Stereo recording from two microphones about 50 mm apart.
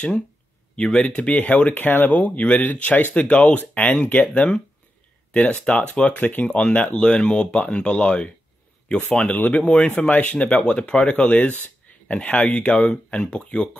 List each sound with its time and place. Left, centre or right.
0.7 s speech: centre
1.7 s speech: left
9.3 s speech: left
9.6 s speech: left